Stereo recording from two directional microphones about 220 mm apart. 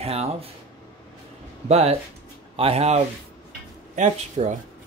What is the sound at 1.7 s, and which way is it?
Speech, 30° right (ahead or behind).